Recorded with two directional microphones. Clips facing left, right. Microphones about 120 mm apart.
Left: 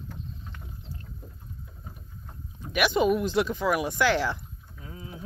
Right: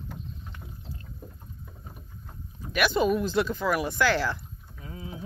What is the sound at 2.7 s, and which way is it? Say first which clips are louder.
Speech: left 1 dB; 15° left (ahead or behind).